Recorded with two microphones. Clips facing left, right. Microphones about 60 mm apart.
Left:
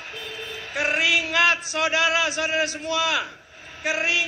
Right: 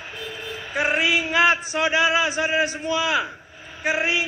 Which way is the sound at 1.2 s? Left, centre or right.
Right.